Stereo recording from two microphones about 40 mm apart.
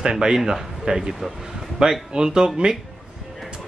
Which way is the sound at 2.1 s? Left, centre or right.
Right.